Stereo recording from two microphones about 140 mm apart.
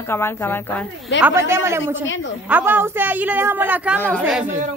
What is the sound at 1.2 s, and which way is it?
A woman's voice, 20° right (ahead or behind).